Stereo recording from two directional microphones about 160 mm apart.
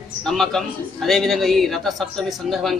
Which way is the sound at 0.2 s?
5° left (ahead or behind).